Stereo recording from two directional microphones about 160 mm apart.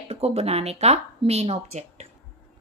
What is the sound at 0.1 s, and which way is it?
A woman's voice, 40° right (ahead or behind).